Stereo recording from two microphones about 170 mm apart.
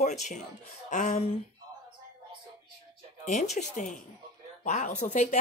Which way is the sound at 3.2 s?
45° left (ahead or behind).